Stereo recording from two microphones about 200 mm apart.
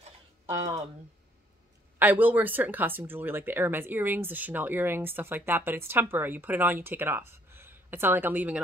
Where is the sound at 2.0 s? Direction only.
10° right (ahead or behind).